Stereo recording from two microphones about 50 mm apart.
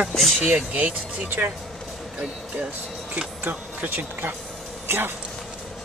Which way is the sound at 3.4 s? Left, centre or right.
Right.